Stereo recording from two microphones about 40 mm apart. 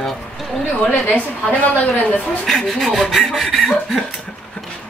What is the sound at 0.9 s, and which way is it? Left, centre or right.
Speech, left.